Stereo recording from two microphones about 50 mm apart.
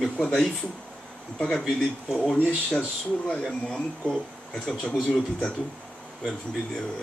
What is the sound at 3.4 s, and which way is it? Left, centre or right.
Speech, centre.